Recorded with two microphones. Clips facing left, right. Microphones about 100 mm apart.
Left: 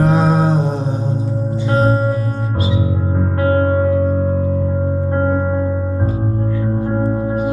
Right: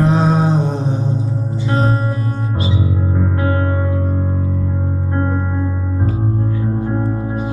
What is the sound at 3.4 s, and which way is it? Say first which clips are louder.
Music: left 8 dB; 40° left (ahead or behind).